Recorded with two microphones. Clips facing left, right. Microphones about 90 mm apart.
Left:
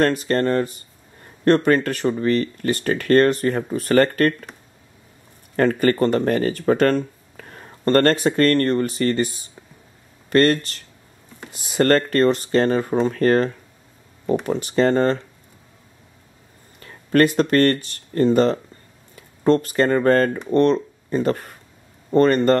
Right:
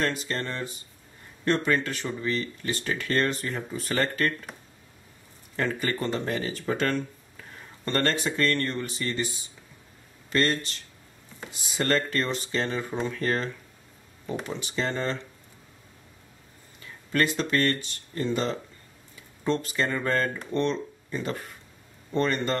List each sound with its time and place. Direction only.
0.0 s speech: 55° left (ahead or behind)
5.6 s speech: 55° left (ahead or behind)
16.8 s speech: 50° left (ahead or behind)